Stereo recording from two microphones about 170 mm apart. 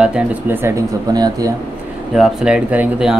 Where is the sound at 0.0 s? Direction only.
5° right (ahead or behind).